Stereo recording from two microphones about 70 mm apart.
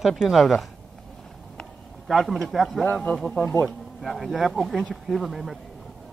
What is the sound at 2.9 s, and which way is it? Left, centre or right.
Speech, centre.